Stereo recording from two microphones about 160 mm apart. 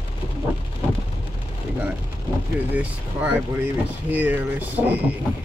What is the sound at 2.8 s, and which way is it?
Speech, 10° right (ahead or behind).